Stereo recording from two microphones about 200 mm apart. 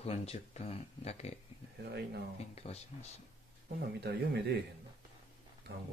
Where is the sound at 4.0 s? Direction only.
55° right (ahead or behind).